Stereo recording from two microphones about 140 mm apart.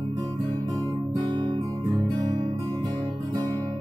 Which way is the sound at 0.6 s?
30° right (ahead or behind).